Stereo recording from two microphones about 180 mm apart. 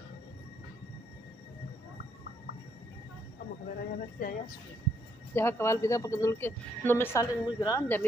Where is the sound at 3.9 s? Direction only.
50° left (ahead or behind).